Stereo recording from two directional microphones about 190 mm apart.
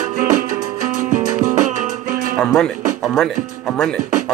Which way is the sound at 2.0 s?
45° right (ahead or behind).